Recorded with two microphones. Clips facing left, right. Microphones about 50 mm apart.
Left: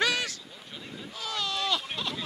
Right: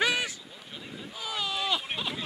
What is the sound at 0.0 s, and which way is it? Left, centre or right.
Boat, centre.